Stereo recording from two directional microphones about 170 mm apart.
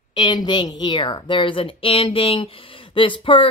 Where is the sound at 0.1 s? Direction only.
25° left (ahead or behind).